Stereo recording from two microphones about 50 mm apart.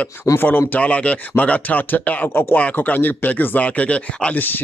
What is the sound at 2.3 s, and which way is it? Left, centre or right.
Speech, left.